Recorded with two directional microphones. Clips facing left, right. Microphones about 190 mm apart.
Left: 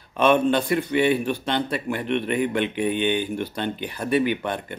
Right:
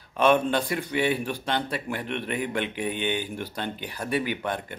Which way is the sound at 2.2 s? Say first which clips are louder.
Left 5 dB; 60° left (ahead or behind).